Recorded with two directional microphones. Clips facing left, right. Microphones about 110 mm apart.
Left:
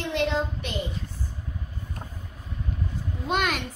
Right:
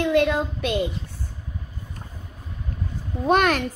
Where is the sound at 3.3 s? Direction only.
45° right (ahead or behind).